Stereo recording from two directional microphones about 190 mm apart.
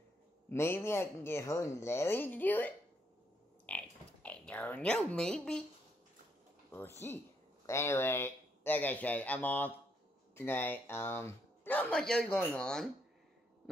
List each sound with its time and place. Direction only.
0.5 s speech: 10° left (ahead or behind)
3.6 s a sound: 5° left (ahead or behind)
7.6 s speech: 15° left (ahead or behind)